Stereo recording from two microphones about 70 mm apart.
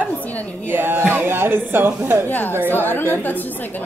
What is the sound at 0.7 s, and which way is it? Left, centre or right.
Speech, right.